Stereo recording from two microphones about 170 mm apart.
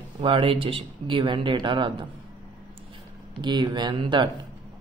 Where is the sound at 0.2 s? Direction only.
35° right (ahead or behind).